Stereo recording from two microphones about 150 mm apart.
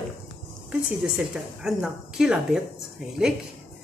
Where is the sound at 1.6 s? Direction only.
5° right (ahead or behind).